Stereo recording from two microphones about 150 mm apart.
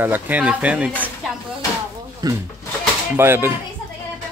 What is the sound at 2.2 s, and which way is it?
Speech, 25° right (ahead or behind).